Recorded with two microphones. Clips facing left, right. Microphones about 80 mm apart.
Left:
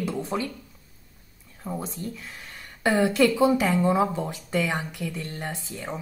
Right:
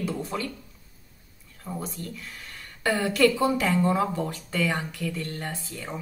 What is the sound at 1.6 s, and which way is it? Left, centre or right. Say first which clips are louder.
Speech: left 2 dB; centre.